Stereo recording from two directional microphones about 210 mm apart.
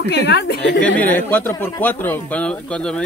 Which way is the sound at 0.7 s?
5° left (ahead or behind).